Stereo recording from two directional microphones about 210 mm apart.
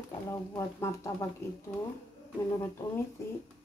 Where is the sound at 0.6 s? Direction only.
15° left (ahead or behind).